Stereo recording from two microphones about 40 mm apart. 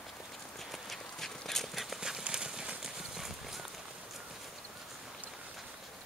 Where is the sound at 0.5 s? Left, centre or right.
Centre.